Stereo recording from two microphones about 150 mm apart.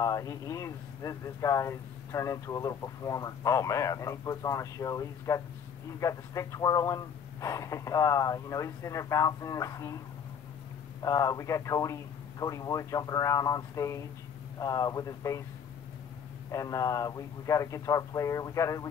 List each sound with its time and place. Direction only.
0.0 s speech: 25° left (ahead or behind)
11.0 s speech: 20° left (ahead or behind)
16.5 s speech: 20° left (ahead or behind)